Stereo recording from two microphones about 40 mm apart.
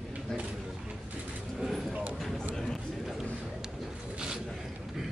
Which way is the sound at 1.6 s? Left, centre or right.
Centre.